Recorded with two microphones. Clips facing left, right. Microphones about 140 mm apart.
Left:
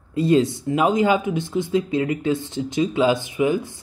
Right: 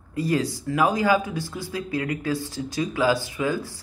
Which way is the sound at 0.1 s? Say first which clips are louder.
Left 6 dB; 25° left (ahead or behind).